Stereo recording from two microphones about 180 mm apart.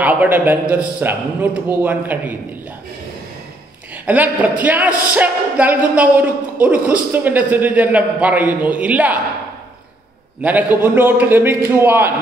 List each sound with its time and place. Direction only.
0.0 s speech: 10° right (ahead or behind)
3.9 s speech: 10° right (ahead or behind)
10.4 s speech: 10° right (ahead or behind)